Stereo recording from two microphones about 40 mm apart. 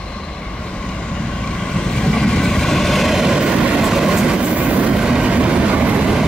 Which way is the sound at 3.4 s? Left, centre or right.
Right.